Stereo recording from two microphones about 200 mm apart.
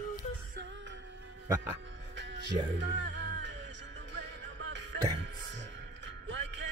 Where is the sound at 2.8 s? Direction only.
60° right (ahead or behind).